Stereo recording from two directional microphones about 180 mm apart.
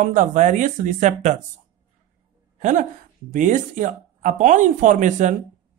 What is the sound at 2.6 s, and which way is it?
A woman's voice, 45° right (ahead or behind).